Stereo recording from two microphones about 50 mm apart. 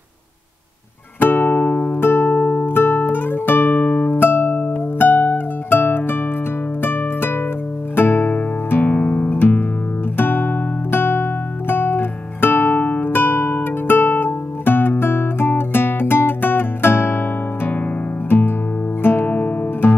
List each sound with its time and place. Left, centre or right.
1.2 s music: left
2.0 s music: left
2.4 s music: left
3.8 s music: left
8.8 s music: left
12.8 s guitar: left
19.0 s music: left
19.3 s music: left